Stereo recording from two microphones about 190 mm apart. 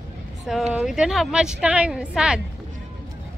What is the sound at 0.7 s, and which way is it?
A woman's voice, 5° right (ahead or behind).